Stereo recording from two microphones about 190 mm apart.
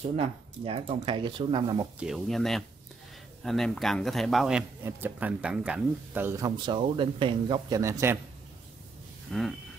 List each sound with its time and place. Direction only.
0.0 s speech: 30° right (ahead or behind)
2.0 s speech: centre (ahead or behind)
9.3 s speech: centre (ahead or behind)